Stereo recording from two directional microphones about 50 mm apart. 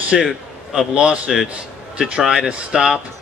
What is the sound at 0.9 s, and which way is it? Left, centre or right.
A man's voice, right.